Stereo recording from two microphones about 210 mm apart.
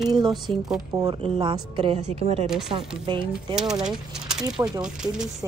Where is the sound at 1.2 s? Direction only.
25° right (ahead or behind).